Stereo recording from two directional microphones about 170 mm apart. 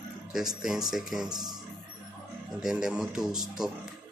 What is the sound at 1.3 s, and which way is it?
Speech, 25° right (ahead or behind).